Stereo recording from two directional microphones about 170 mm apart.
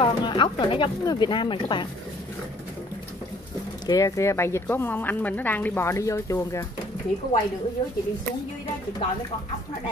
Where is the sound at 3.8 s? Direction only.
20° left (ahead or behind).